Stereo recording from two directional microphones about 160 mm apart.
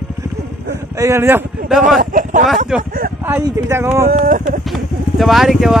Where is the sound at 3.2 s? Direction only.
15° right (ahead or behind).